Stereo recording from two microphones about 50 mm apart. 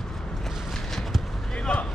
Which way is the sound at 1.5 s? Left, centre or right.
Left.